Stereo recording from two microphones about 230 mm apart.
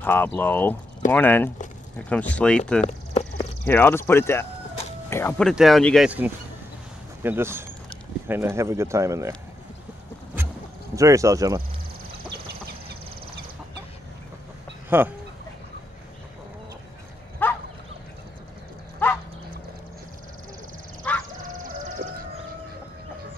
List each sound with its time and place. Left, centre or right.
0.0 s speech: centre
2.9 s a sound: left
3.6 s speech: centre
5.5 s speech: centre
11.0 s speech: centre
14.9 s speech: centre
17.4 s bow-wow: centre
19.0 s dog: centre
21.0 s a sound: centre
22.0 s chicken: right